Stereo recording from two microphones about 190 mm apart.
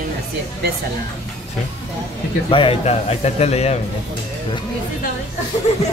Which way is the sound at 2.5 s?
30° left (ahead or behind).